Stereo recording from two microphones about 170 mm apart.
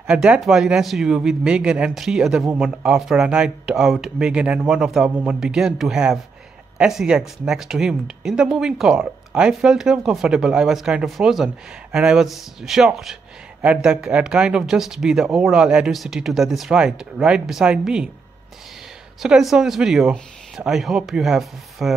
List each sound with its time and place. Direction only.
0.0 s speech: 5° right (ahead or behind)
19.2 s speech: 5° right (ahead or behind)